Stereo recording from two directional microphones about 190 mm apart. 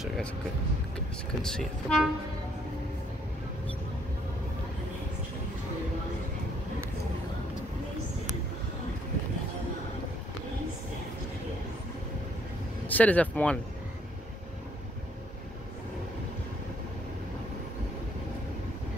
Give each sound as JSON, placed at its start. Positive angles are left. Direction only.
{"t": 0.9, "sound": "speech", "side_deg": 5}
{"t": 12.8, "sound": "speech", "side_deg": 10}